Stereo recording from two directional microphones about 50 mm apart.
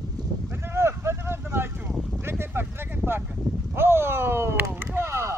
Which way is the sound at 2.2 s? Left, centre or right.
Right.